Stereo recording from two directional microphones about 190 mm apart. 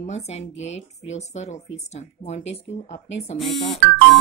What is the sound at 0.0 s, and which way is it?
Speech, 35° left (ahead or behind).